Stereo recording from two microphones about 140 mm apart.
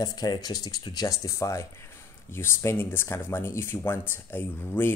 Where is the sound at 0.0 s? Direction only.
25° left (ahead or behind).